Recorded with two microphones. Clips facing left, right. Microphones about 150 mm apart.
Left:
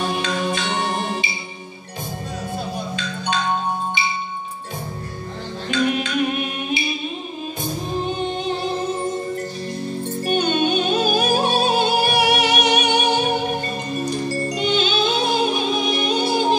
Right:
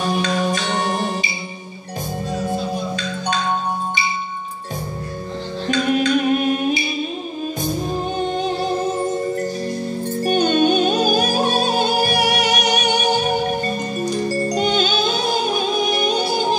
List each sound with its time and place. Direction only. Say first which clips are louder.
0.1 s music: right 3 dB; 40° right (ahead or behind)
5.7 s music: right 4 dB; 40° right (ahead or behind)
8.3 s music: right 3 dB; 40° right (ahead or behind)
10.2 s music: right 4 dB; 40° right (ahead or behind)
14.5 s music: even; 40° right (ahead or behind)